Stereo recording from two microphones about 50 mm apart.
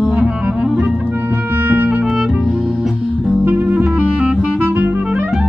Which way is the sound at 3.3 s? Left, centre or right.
Right.